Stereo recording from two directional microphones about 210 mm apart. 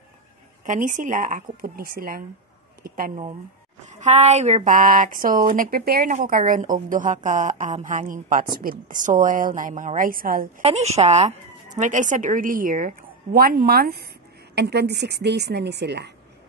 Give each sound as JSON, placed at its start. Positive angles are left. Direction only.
{"t": 0.7, "sound": "speech", "side_deg": -40}
{"t": 3.8, "sound": "speech", "side_deg": -35}
{"t": 10.6, "sound": "speech", "side_deg": -30}